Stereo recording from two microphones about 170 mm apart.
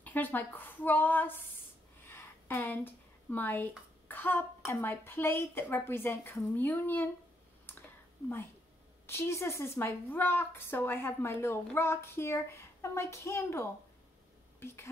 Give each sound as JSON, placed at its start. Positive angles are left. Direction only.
{"t": 0.0, "sound": "a woman's voice", "side_deg": 10}
{"t": 9.0, "sound": "a woman's voice", "side_deg": 15}